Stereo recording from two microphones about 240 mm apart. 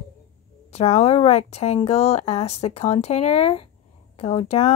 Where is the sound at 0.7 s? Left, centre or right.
Left.